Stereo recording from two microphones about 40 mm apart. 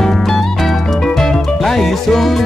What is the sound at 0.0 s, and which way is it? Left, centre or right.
Music, centre.